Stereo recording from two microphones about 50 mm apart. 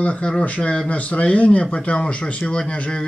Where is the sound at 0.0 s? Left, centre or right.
Left.